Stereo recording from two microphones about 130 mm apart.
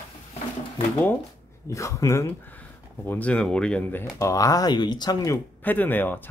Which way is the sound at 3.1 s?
10° left (ahead or behind).